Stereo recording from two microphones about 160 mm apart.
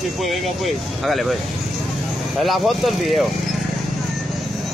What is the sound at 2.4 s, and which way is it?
Speech, centre (ahead or behind).